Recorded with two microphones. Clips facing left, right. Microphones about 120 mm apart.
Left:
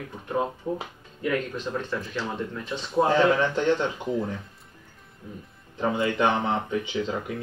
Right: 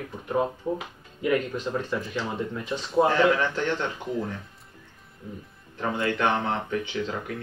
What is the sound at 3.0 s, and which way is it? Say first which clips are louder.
Speech: left 3 dB; 20° left (ahead or behind).